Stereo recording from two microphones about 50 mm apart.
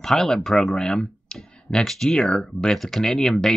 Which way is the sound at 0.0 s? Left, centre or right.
Centre.